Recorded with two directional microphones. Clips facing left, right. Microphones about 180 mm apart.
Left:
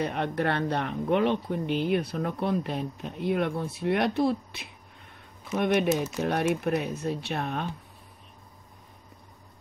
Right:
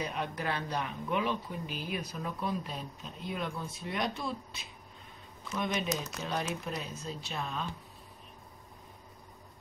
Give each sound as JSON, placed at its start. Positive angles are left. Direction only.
{"t": 0.0, "sound": "speech", "side_deg": 60}